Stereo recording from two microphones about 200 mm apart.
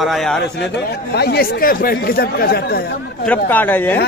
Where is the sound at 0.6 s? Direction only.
60° left (ahead or behind).